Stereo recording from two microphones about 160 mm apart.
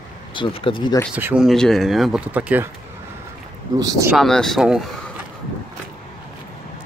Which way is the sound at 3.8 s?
20° right (ahead or behind).